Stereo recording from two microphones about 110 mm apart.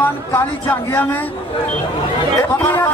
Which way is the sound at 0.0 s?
20° left (ahead or behind).